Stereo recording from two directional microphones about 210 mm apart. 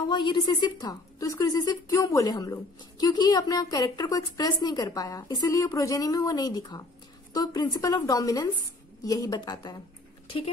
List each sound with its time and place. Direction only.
0.1 s a woman's voice: 20° left (ahead or behind)